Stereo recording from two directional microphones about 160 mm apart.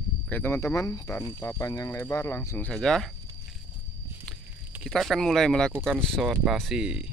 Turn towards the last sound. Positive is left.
turn(degrees=-5)  # may be behind; listen again after turning